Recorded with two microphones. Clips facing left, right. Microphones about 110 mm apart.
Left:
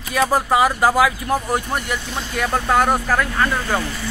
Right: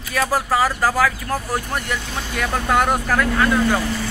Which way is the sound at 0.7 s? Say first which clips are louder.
Left 3 dB; 20° left (ahead or behind).